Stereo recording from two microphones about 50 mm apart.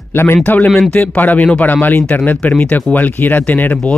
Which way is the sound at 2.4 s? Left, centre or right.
Left.